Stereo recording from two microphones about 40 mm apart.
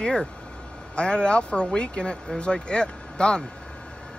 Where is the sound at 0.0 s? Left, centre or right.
Left.